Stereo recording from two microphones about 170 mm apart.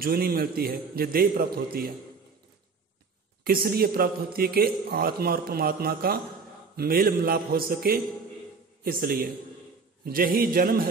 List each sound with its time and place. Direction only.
0.0 s a man's voice: 60° right (ahead or behind)
3.4 s a man's voice: 60° right (ahead or behind)